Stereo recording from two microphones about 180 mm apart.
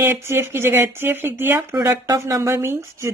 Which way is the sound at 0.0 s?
15° right (ahead or behind).